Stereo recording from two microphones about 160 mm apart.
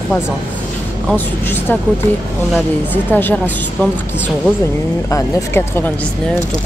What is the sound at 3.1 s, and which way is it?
Speech, 10° left (ahead or behind).